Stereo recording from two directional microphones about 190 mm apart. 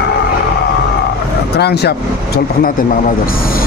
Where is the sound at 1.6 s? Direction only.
60° left (ahead or behind).